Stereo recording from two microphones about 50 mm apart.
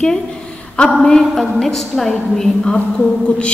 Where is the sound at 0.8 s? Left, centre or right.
Left.